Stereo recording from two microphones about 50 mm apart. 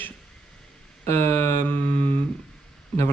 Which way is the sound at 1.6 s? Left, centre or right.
Left.